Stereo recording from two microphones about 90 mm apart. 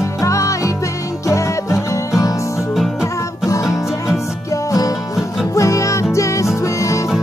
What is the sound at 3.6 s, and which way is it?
Music, 5° right (ahead or behind).